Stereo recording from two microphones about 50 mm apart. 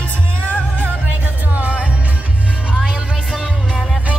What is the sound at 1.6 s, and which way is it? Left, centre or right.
Music, right.